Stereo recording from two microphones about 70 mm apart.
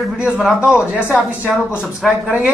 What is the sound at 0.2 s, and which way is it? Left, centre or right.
Speech, centre.